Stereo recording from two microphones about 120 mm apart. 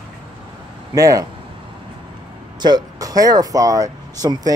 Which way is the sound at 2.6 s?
35° right (ahead or behind).